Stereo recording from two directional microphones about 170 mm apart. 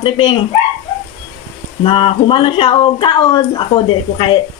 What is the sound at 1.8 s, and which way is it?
Speech, 30° left (ahead or behind).